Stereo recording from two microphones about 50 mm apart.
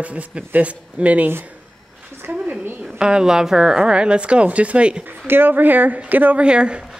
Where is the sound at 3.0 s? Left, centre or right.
Centre.